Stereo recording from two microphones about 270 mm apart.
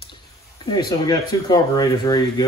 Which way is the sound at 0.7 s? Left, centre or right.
Centre.